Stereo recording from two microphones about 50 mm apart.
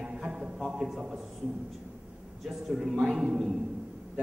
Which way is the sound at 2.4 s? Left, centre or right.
Centre.